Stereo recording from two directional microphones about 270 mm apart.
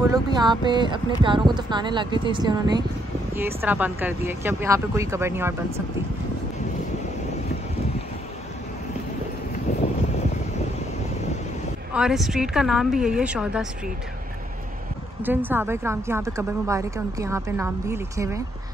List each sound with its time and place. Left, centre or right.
0.1 s a woman's voice: centre
9.7 s wind noise: left
11.9 s a woman's voice: centre
15.2 s a woman's voice: centre